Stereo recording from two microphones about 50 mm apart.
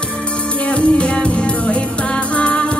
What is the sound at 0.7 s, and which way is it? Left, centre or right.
Music, left.